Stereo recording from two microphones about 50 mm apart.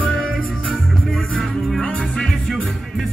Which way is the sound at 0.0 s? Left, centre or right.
Centre.